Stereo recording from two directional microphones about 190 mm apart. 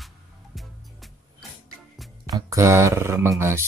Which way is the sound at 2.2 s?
20° right (ahead or behind).